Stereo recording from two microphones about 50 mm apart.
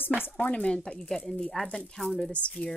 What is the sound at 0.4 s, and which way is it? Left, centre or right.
Speech, left.